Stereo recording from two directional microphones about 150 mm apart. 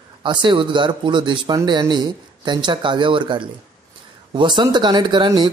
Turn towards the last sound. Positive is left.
turn(degrees=-30)  # may be behind; listen again after turning